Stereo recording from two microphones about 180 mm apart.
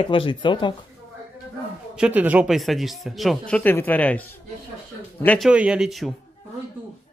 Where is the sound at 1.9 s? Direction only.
5° right (ahead or behind).